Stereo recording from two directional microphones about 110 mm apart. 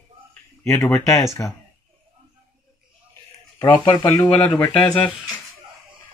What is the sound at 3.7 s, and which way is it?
Speech, 35° left (ahead or behind).